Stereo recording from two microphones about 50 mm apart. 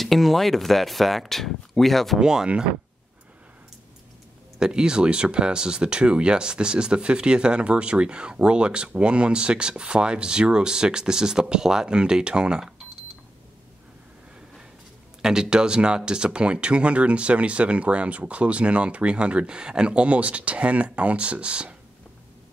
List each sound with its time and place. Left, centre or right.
0.0 s speech: centre
2.1 s speech: centre
4.6 s speech: centre
15.2 s speech: centre